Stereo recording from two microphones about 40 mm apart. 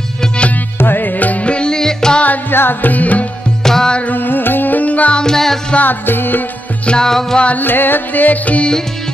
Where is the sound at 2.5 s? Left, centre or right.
Left.